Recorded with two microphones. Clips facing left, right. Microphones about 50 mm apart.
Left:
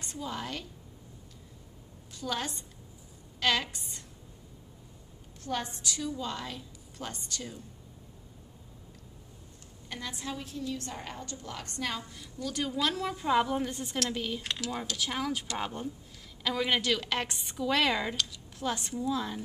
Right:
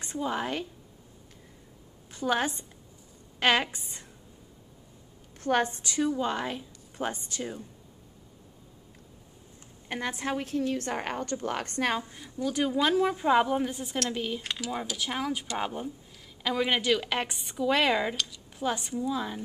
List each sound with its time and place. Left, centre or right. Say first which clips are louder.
0.1 s a woman's voice: right 7 dB; right
2.1 s a woman's voice: right 7 dB; right
5.4 s a woman's voice: right 8 dB; right; by 7.6 s centre
9.8 s a woman's voice: right 7 dB; right
12.1 s a woman's voice: right 6 dB; right